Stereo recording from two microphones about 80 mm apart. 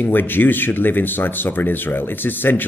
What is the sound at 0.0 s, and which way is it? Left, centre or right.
A man's voice, left.